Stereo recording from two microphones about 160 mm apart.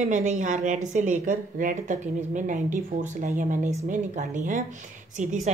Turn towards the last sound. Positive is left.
turn(degrees=-45)  # may be behind; listen again after turning